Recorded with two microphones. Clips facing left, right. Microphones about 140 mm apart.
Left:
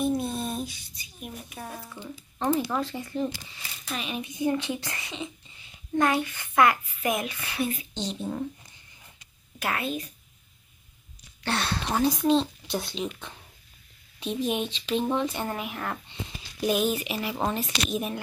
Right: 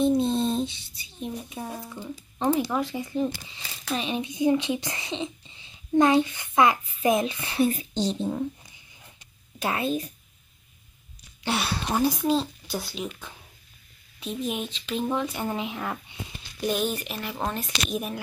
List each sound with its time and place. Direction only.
0.0 s a sound: 25° right (ahead or behind)
1.6 s speech: 15° right (ahead or behind)
3.9 s a child's voice: 30° right (ahead or behind)
4.4 s a child's voice: 15° right (ahead or behind); by 8.3 s 35° right (ahead or behind)
9.6 s a child's voice: 25° right (ahead or behind)
11.4 s speech: 5° right (ahead or behind)
15.5 s a child's voice: 20° right (ahead or behind)
15.8 s speech: 10° right (ahead or behind)
16.6 s speech: 5° left (ahead or behind)